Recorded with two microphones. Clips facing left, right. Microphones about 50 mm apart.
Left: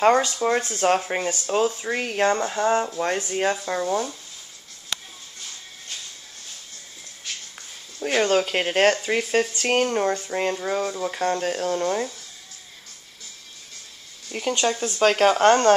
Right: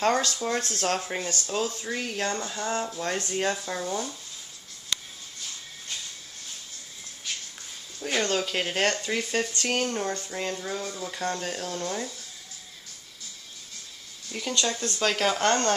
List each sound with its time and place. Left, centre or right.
0.0 s speech: centre
1.9 s speech: left
3.2 s speech: centre
8.0 s speech: left
14.3 s speech: left